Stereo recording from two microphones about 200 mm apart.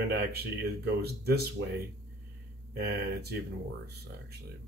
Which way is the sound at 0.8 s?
55° right (ahead or behind).